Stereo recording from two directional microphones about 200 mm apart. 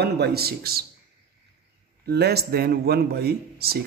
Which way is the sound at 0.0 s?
55° right (ahead or behind).